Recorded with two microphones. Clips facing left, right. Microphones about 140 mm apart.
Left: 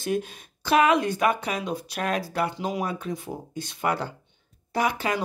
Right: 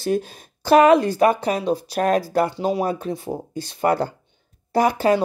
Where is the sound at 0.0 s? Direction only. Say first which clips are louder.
Right 5 dB; 35° right (ahead or behind).